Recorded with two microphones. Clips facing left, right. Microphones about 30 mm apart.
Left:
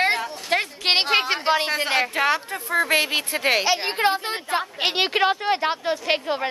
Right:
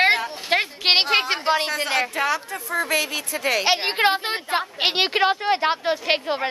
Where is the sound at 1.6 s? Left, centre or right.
Centre; by 3.6 s left.